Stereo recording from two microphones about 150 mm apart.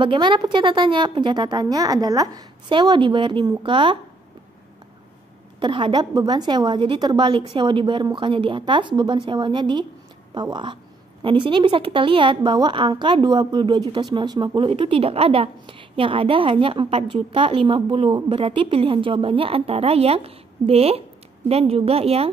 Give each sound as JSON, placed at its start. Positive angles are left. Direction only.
{"t": 0.0, "sound": "a woman's voice", "side_deg": -35}
{"t": 5.6, "sound": "a woman's voice", "side_deg": -35}